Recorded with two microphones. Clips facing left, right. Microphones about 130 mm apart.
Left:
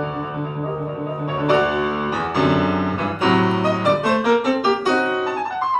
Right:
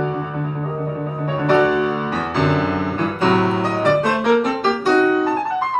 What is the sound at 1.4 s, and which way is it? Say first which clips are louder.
Music: right 2 dB; 10° left (ahead or behind).